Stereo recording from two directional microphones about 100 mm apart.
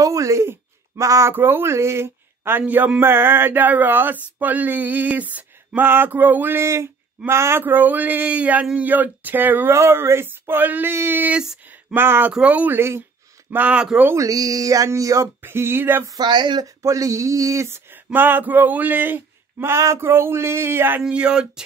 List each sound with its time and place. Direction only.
0.0 s a man's voice: 30° right (ahead or behind); by 13.8 s 15° right (ahead or behind)
14.1 s a sound: 35° right (ahead or behind)
15.4 s speech: 25° right (ahead or behind)
16.1 s speech: 45° right (ahead or behind)
16.6 s speech: 35° right (ahead or behind)
21.0 s a man's voice: 10° right (ahead or behind)